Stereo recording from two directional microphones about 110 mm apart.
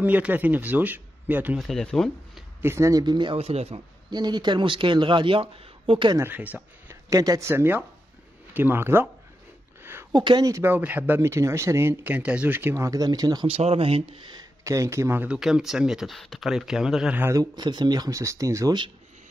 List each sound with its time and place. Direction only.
0.0 s speech: 15° right (ahead or behind)
1.6 s speech: 5° left (ahead or behind)
2.6 s speech: 25° right (ahead or behind); by 3.3 s 40° right (ahead or behind)
3.3 s speech: 70° right (ahead or behind)
4.1 s speech: 40° right (ahead or behind)
6.1 s speech: 20° right (ahead or behind)
7.1 s speech: 30° right (ahead or behind)
10.1 s speech: 40° right (ahead or behind)
10.5 s speech: 20° right (ahead or behind); by 13.5 s 35° right (ahead or behind)
13.5 s speech: 65° right (ahead or behind)
14.6 s speech: 30° right (ahead or behind)
15.2 s speech: 5° right (ahead or behind)
17.2 s speech: 30° right (ahead or behind)